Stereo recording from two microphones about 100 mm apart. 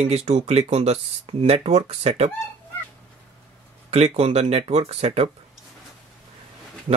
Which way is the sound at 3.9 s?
90° right.